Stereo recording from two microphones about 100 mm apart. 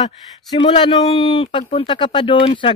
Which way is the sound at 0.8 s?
45° left (ahead or behind).